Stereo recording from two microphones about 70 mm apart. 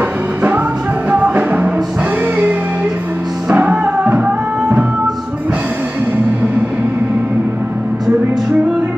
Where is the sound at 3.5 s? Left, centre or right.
Centre.